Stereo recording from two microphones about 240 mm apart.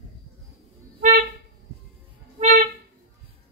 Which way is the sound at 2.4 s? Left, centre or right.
Right.